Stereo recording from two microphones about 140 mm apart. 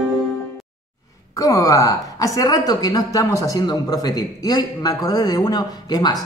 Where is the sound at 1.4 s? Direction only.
25° left (ahead or behind).